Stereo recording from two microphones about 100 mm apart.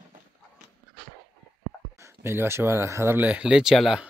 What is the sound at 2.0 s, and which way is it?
Speech, 25° right (ahead or behind).